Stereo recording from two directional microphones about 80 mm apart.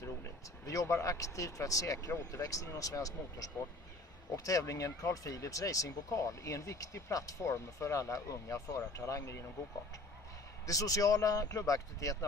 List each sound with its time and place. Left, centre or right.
0.0 s speech: left
10.7 s speech: left